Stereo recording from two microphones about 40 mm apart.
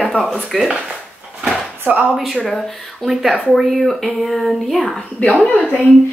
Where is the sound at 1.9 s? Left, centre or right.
Right.